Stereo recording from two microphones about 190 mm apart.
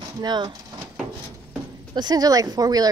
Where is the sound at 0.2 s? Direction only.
20° right (ahead or behind).